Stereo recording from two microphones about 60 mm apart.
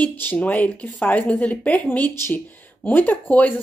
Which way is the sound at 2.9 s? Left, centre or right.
Left.